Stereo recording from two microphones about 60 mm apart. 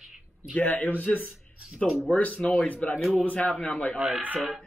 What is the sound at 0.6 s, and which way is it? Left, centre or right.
Speech, left.